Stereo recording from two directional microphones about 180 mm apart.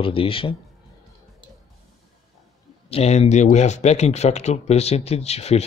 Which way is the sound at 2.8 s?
35° left (ahead or behind).